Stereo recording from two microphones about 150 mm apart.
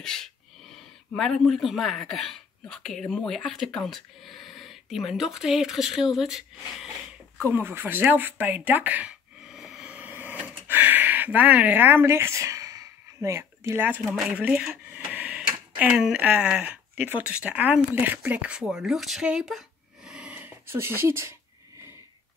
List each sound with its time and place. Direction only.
0.0 s speech: 5° left (ahead or behind)
7.4 s a sound: 15° right (ahead or behind)
10.7 s speech: 10° right (ahead or behind)
20.1 s dog: 5° right (ahead or behind)